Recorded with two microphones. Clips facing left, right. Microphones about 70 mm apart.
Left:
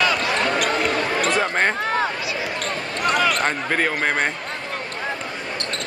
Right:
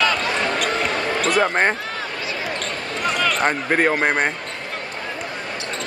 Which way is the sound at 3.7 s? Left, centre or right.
Right.